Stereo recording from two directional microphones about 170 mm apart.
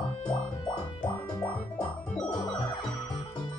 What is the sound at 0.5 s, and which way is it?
Music, 25° left (ahead or behind).